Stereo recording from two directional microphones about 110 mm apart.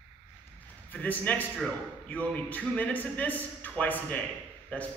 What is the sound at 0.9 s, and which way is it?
A man's voice, 15° left (ahead or behind).